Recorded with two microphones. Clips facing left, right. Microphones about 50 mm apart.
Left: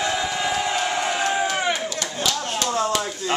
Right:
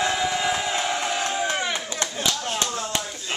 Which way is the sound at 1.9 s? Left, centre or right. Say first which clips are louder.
Left 1 dB; right.